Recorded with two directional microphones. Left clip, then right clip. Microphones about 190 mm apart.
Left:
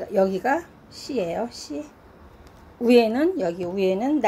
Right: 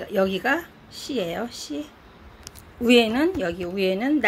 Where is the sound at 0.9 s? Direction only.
25° left (ahead or behind).